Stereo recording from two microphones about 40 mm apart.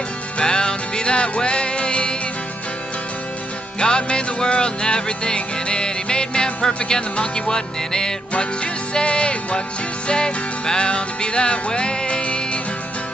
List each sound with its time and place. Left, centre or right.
0.4 s music: left
3.8 s music: left